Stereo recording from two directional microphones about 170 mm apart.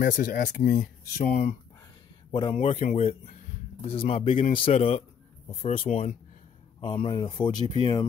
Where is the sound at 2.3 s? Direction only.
25° left (ahead or behind).